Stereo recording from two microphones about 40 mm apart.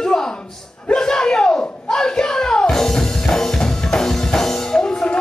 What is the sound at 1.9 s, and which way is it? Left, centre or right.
Music, centre.